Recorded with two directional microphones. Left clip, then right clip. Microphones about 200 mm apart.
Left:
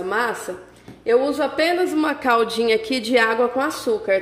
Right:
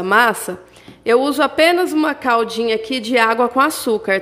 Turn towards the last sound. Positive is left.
turn(degrees=-30)  # may be behind; listen again after turning